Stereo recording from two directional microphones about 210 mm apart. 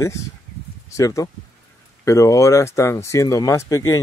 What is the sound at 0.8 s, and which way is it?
A man's voice, 15° left (ahead or behind).